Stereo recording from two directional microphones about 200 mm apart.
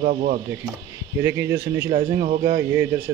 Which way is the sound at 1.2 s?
15° right (ahead or behind).